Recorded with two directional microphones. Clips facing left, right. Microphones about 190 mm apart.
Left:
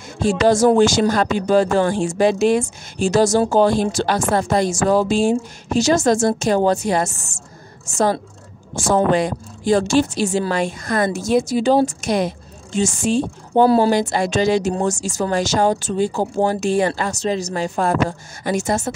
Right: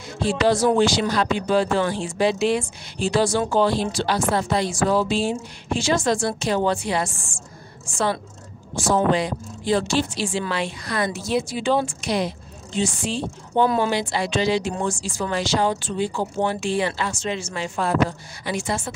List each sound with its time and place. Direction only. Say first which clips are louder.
0.2 s a woman's voice: left 5 dB; 45° left (ahead or behind)